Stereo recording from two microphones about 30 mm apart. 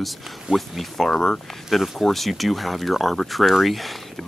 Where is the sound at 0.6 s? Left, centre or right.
Centre.